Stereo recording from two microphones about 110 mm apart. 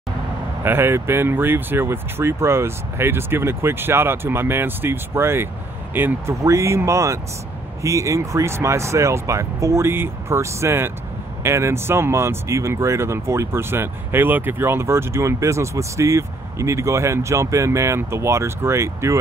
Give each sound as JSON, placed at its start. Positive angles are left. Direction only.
{"t": 0.7, "sound": "speech", "side_deg": -20}